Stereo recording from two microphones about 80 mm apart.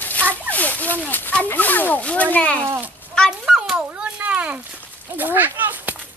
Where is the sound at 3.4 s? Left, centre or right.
Centre.